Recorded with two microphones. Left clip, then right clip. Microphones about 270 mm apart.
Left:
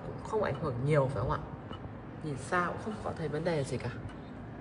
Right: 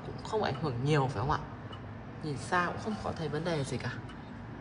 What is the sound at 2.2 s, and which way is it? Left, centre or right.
A woman's voice, centre.